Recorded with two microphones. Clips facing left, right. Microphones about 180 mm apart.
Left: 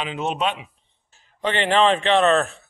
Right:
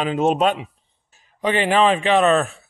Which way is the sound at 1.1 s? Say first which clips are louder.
Right 3 dB; 10° right (ahead or behind).